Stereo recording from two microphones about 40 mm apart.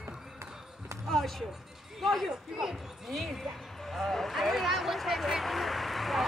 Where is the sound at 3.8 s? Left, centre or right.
Centre.